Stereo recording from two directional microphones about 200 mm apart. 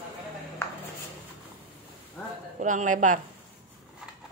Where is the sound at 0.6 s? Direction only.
15° left (ahead or behind).